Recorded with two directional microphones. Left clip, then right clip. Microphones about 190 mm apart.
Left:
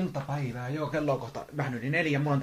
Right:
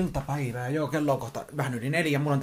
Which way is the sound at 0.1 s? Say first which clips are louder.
Right 3 dB; 45° right (ahead or behind).